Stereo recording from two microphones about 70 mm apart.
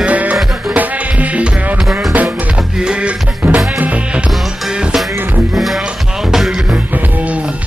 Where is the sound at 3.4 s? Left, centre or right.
Right.